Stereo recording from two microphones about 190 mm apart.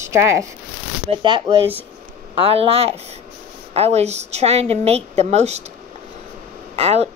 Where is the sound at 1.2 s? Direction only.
25° right (ahead or behind).